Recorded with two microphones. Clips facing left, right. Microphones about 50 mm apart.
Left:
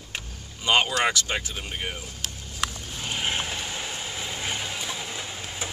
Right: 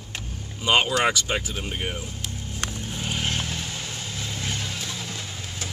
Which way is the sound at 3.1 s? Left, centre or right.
Centre.